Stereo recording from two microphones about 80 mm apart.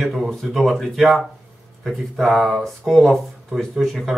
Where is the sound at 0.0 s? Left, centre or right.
Centre.